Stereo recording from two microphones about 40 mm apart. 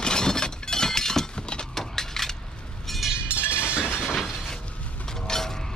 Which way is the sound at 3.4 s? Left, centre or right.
Left.